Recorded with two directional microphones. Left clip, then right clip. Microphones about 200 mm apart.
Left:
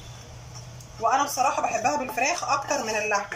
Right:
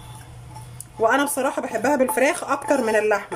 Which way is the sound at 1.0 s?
50° right (ahead or behind).